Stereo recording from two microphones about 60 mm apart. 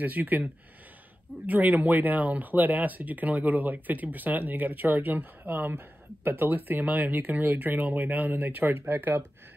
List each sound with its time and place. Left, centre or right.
0.0 s speech: right